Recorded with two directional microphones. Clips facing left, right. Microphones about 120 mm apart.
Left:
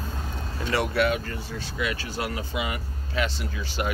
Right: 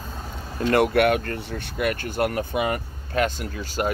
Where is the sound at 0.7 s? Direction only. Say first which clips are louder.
Right 6 dB; 55° right (ahead or behind).